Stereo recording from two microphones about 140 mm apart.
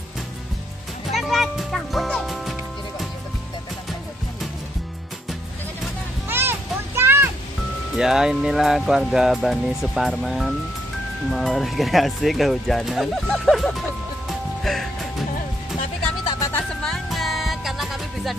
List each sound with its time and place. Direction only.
1.1 s music: centre (ahead or behind)
6.2 s a sound: 15° right (ahead or behind)
7.0 s music: 15° right (ahead or behind)
8.0 s speech: 5° right (ahead or behind)
14.6 s music: centre (ahead or behind)
16.8 s music: centre (ahead or behind)